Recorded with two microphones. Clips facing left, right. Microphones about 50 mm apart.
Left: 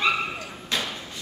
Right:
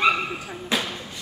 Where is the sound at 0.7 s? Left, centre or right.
Centre.